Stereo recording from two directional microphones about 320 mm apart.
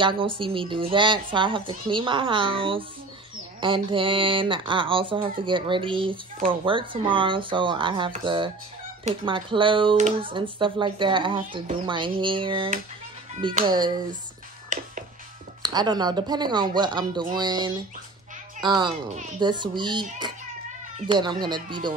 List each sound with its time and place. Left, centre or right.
0.0 s speech: centre
14.7 s music: right
15.6 s speech: centre